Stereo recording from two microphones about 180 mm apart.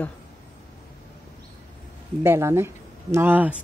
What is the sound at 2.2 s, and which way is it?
Speech, 15° right (ahead or behind).